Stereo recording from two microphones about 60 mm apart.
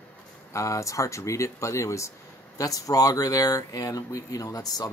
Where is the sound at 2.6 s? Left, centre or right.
Left.